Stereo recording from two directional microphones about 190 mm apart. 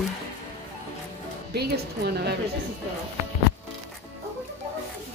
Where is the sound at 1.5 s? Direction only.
60° right (ahead or behind).